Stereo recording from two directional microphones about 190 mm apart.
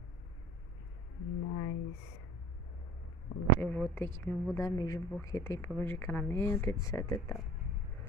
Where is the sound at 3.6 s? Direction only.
10° left (ahead or behind).